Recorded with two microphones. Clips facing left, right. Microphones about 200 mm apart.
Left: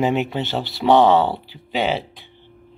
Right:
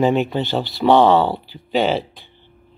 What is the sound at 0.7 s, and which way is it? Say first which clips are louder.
Speech: right 1 dB; 20° left (ahead or behind).